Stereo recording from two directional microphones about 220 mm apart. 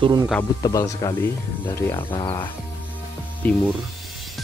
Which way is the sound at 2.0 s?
25° left (ahead or behind).